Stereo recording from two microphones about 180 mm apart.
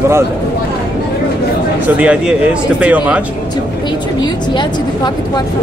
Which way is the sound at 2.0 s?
5° right (ahead or behind).